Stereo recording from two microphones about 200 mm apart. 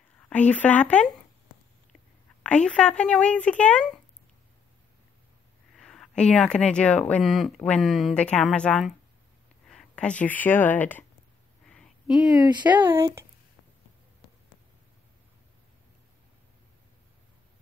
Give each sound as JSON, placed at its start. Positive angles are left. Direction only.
{"t": 0.3, "sound": "speech", "side_deg": 5}
{"t": 2.4, "sound": "speech", "side_deg": 5}
{"t": 5.8, "sound": "speech", "side_deg": 0}
{"t": 11.6, "sound": "a sound", "side_deg": 0}
{"t": 12.4, "sound": "speech", "side_deg": -20}
{"t": 12.6, "sound": "speech", "side_deg": -10}